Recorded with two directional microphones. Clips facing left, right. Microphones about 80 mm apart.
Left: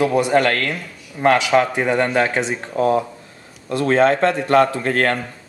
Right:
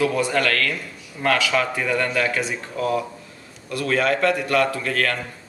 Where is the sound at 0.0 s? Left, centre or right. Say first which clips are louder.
Left 5 dB; left.